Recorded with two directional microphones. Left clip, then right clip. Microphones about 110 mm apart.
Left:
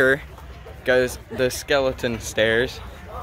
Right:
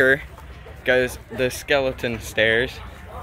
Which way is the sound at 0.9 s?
5° left (ahead or behind).